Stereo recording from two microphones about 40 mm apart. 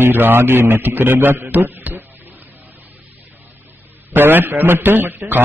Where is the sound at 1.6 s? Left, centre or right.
Right.